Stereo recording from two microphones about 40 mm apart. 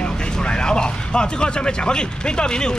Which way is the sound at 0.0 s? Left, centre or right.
Left.